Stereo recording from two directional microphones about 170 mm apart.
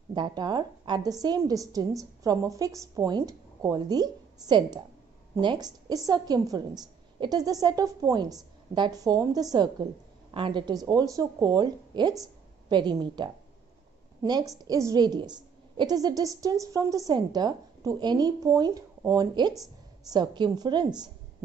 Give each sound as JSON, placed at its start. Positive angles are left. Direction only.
{"t": 0.1, "sound": "a woman's voice", "side_deg": -25}